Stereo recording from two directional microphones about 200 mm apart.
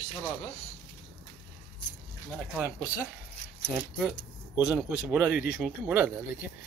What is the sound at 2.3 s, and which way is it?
Speech, 5° right (ahead or behind).